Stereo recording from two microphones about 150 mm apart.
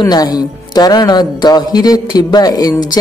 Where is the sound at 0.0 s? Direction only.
25° left (ahead or behind).